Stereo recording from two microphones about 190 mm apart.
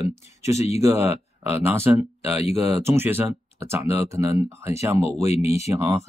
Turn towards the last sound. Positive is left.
turn(degrees=-15)  # may be behind; listen again after turning